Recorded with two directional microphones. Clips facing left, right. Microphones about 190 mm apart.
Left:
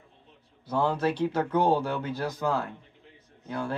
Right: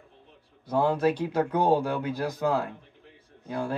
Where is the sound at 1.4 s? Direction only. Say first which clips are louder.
Right 2 dB; 10° right (ahead or behind).